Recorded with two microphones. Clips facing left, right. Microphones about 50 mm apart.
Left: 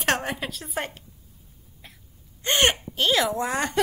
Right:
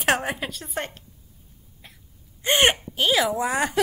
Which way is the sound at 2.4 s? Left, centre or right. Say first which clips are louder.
Right 2 dB; centre.